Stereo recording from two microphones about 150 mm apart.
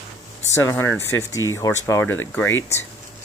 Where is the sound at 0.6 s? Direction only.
20° left (ahead or behind).